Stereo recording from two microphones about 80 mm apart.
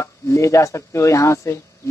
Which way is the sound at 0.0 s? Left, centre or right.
Left.